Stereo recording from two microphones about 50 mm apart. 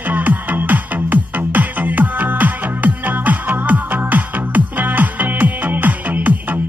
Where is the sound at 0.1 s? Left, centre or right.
Right.